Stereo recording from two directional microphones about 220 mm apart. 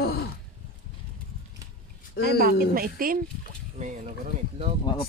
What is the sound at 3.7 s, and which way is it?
Speech, 30° right (ahead or behind).